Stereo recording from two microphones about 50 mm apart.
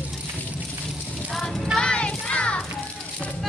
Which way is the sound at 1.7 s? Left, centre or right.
Centre.